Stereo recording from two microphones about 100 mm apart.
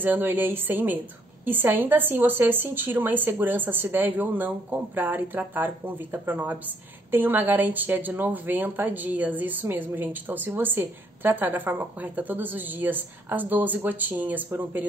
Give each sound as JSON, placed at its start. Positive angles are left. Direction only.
{"t": 0.0, "sound": "a woman's voice", "side_deg": -20}